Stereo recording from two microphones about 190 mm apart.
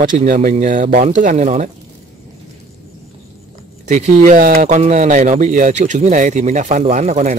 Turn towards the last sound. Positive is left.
turn(degrees=-40)  # may be behind; listen again after turning